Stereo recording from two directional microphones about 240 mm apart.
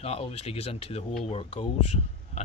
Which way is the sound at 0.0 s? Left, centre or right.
Left.